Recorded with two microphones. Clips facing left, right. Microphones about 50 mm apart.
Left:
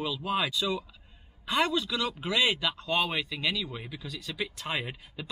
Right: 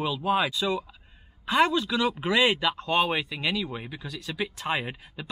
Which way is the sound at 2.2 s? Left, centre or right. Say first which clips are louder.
Right 3 dB; centre.